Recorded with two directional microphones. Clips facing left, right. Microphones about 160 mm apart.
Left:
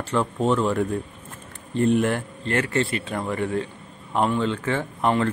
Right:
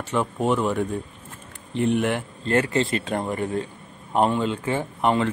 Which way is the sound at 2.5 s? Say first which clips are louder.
Right 2 dB; 20° right (ahead or behind).